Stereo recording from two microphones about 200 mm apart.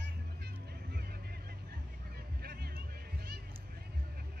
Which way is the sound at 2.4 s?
50° right (ahead or behind).